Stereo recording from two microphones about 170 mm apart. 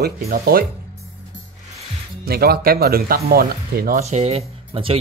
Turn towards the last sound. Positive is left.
turn(degrees=-35)  # may be behind; listen again after turning